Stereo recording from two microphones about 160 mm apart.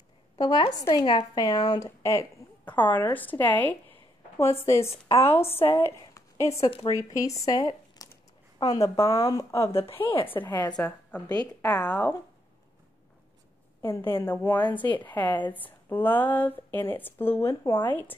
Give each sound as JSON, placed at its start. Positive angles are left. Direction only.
{"t": 0.4, "sound": "a woman's voice", "side_deg": 25}
{"t": 5.6, "sound": "speech", "side_deg": 35}
{"t": 5.9, "sound": "a sound", "side_deg": 20}
{"t": 6.9, "sound": "a woman's voice", "side_deg": 20}
{"t": 9.0, "sound": "speech", "side_deg": 35}
{"t": 9.3, "sound": "speech", "side_deg": 20}
{"t": 9.7, "sound": "speech", "side_deg": 35}
{"t": 10.1, "sound": "speech", "side_deg": 10}
{"t": 11.2, "sound": "a woman's voice", "side_deg": 25}
{"t": 11.7, "sound": "speech", "side_deg": 10}
{"t": 14.2, "sound": "speech", "side_deg": 15}